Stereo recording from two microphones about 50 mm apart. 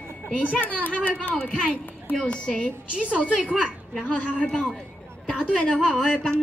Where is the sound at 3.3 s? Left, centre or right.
Right.